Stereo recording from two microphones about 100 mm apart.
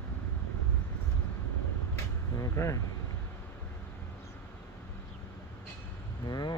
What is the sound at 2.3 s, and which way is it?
Speech, 30° left (ahead or behind).